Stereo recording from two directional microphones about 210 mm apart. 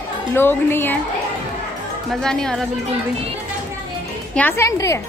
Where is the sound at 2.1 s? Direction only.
5° left (ahead or behind).